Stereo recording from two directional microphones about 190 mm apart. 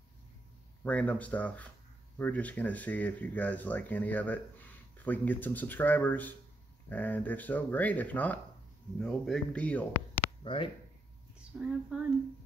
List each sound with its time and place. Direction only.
0.8 s speech: 10° left (ahead or behind)
10.4 s speech: 25° left (ahead or behind)
11.5 s speech: 5° right (ahead or behind)